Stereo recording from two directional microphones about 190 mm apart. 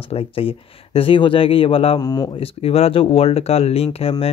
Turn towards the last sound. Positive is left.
turn(degrees=30)  # may be behind; listen again after turning